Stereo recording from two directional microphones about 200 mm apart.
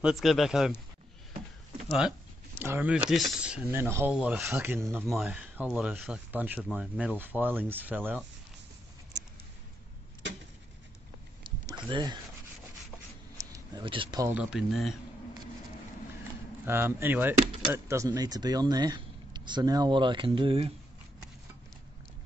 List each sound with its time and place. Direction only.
0.0 s speech: centre (ahead or behind)
1.9 s speech: centre (ahead or behind)
11.4 s a sound: 25° right (ahead or behind)
13.4 s a sound: 20° right (ahead or behind)
14.3 s speech: 5° right (ahead or behind)
16.6 s speech: 10° right (ahead or behind); by 20.7 s 25° right (ahead or behind)